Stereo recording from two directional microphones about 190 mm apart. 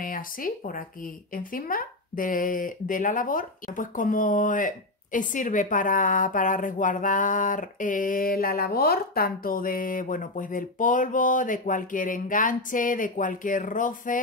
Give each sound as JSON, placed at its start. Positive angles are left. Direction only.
{"t": 0.0, "sound": "speech", "side_deg": 45}